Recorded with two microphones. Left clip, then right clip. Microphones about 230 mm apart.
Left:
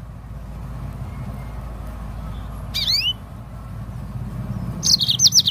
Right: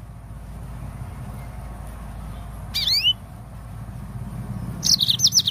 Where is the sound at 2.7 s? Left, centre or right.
Centre.